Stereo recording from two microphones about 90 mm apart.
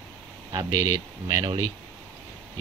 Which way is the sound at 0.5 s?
40° right (ahead or behind).